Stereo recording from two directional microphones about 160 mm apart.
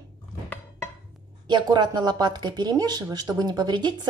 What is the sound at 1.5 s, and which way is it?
Speech, 25° right (ahead or behind).